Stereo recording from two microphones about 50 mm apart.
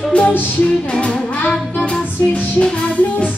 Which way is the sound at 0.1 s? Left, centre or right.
Left.